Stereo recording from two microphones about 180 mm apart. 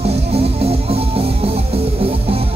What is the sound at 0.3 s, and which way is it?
Music, 35° right (ahead or behind).